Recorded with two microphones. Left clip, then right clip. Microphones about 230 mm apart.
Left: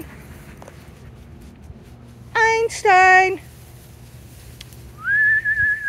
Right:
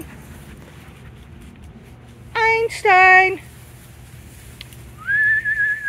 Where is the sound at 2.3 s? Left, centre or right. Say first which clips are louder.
Even; centre.